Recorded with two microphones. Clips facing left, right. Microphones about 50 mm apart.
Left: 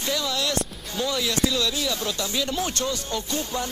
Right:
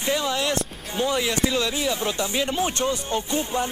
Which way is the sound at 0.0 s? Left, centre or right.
Right.